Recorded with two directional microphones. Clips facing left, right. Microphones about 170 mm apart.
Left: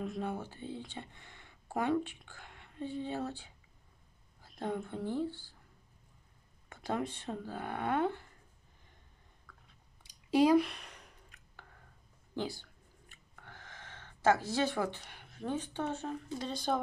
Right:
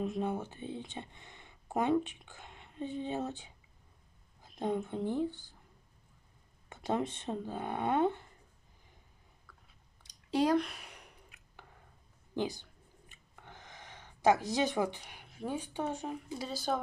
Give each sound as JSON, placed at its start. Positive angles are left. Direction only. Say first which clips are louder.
{"t": 0.0, "sound": "speech", "louder": "right 3 dB", "side_deg": -20}
{"t": 6.7, "sound": "speech", "louder": "right 2 dB", "side_deg": -25}
{"t": 9.5, "sound": "chewing", "louder": "left 1 dB", "side_deg": -5}
{"t": 10.0, "sound": "a sound", "louder": "left 3 dB", "side_deg": 10}
{"t": 10.7, "sound": "a sound", "louder": "even", "side_deg": -10}
{"t": 12.4, "sound": "speech", "louder": "right 3 dB", "side_deg": -20}